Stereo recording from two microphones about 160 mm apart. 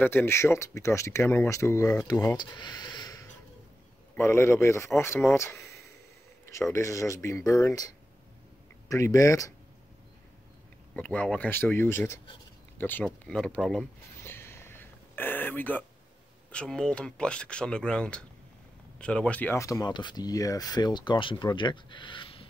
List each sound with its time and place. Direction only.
0.0 s speech: 15° left (ahead or behind)
11.0 s speech: 5° left (ahead or behind)
14.2 s a sound: 15° left (ahead or behind)
16.5 s speech: 5° left (ahead or behind); by 22.5 s 35° left (ahead or behind)